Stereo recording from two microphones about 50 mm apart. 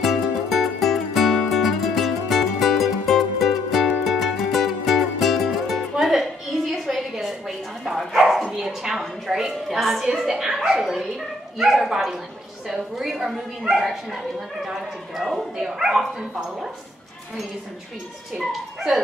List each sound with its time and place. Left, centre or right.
0.0 s music: centre
9.8 s a sound: centre
10.1 s speech: centre
18.4 s speech: centre